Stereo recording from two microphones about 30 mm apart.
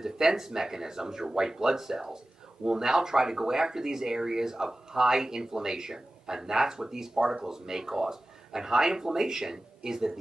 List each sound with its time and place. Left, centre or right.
0.0 s speech: centre